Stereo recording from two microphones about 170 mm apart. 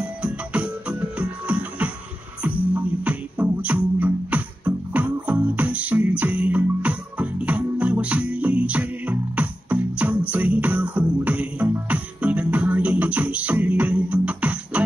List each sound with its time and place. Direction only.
0.0 s music: 5° right (ahead or behind)